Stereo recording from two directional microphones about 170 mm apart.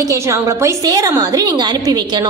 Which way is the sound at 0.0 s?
20° right (ahead or behind).